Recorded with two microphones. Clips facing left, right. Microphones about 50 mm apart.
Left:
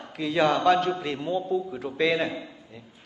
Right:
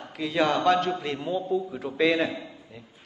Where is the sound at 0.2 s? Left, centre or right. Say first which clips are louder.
Left 1 dB; centre.